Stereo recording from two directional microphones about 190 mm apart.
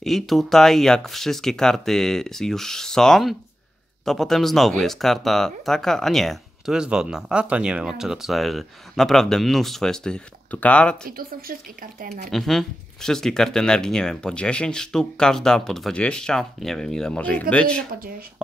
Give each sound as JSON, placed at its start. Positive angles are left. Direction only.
{"t": 0.0, "sound": "speech", "side_deg": 0}
{"t": 11.1, "sound": "speech", "side_deg": -50}
{"t": 12.3, "sound": "speech", "side_deg": 0}